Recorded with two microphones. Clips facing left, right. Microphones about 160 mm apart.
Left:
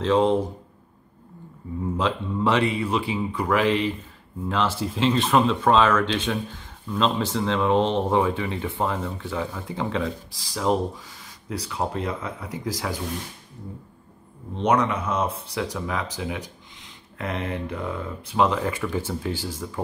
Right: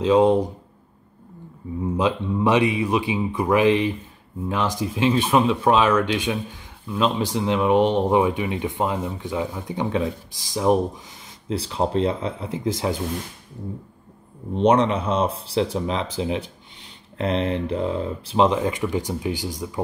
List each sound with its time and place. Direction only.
0.0 s speech: 15° right (ahead or behind)
2.0 s speech: 15° right (ahead or behind)
11.4 s speech: 30° right (ahead or behind)
14.6 s speech: 30° right (ahead or behind)